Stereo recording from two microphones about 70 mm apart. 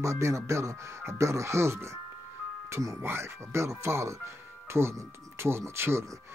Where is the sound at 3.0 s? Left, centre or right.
Right.